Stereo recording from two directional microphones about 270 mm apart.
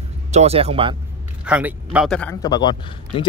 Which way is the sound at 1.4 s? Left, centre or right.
Centre.